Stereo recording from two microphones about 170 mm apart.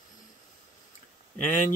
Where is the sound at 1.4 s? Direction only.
50° left (ahead or behind).